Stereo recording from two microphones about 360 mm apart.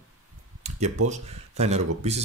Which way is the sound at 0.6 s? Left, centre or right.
Centre.